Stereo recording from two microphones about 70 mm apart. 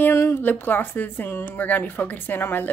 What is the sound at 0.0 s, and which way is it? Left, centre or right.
A woman's voice, left.